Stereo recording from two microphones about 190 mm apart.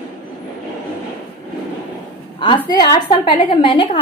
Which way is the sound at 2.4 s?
25° left (ahead or behind).